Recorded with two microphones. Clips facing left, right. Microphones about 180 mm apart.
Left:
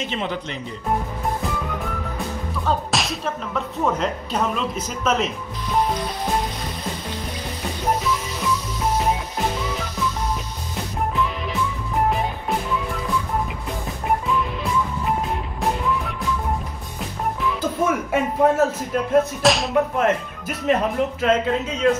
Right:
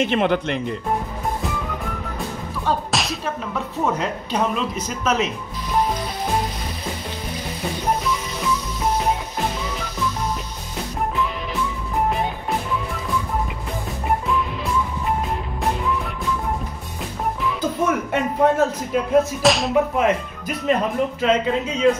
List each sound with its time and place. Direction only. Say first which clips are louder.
0.0 s speech: right 7 dB; 60° right (ahead or behind)
2.6 s speech: even; centre (ahead or behind)
17.4 s speech: even; centre (ahead or behind)